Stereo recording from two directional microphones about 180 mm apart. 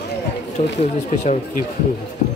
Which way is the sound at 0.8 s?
40° left (ahead or behind).